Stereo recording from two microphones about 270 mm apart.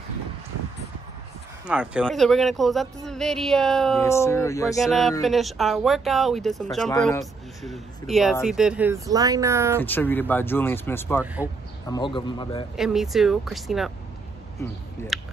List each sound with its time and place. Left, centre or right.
1.7 s speech: centre
4.7 s speech: centre
6.9 s speech: centre
7.6 s speech: centre
9.8 s speech: centre
12.7 s speech: centre
15.1 s speech: centre